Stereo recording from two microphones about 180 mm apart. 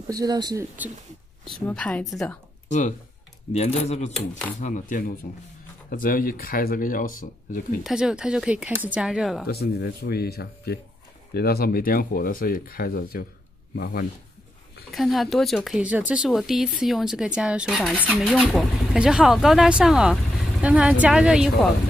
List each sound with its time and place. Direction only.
0.1 s speech: 20° right (ahead or behind)
1.5 s speech: 5° left (ahead or behind)
3.5 s speech: 40° left (ahead or behind)
4.1 s speech: 5° left (ahead or behind)
4.6 s speech: 45° left (ahead or behind)
7.8 s speech: 5° right (ahead or behind)
9.5 s speech: 60° left (ahead or behind)
14.9 s speech: centre (ahead or behind)